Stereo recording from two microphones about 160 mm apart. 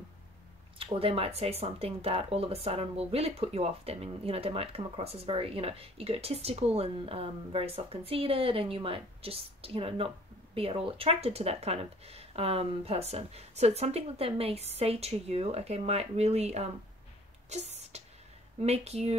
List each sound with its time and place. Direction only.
0.7 s speech: 35° right (ahead or behind)
17.5 s a sound: 40° right (ahead or behind)
18.6 s speech: 40° right (ahead or behind)